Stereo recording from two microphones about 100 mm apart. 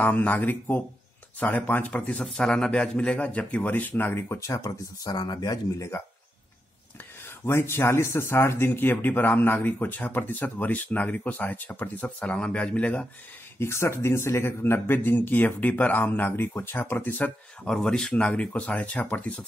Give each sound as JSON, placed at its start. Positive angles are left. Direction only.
{"t": 0.0, "sound": "a man's voice", "side_deg": 15}
{"t": 7.4, "sound": "speech", "side_deg": 25}
{"t": 13.6, "sound": "speech", "side_deg": 25}
{"t": 17.6, "sound": "a man's voice", "side_deg": 5}